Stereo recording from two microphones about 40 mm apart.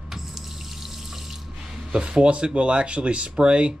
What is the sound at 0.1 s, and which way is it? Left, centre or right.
Water, centre.